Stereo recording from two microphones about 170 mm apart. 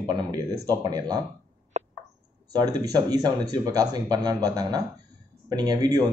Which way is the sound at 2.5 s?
20° right (ahead or behind).